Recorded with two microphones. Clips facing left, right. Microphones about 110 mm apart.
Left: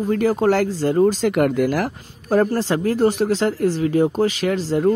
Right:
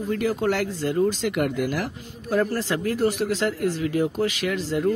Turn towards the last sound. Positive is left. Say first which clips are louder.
# left 5 dB
turn(degrees=35)  # may be behind; listen again after turning